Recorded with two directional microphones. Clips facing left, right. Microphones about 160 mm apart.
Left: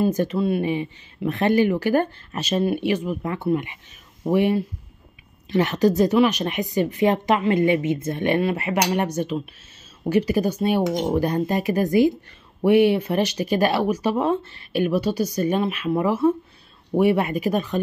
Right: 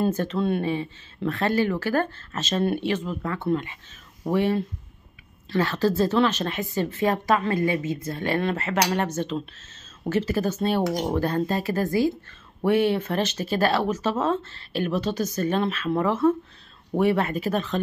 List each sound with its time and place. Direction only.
0.0 s speech: 10° left (ahead or behind)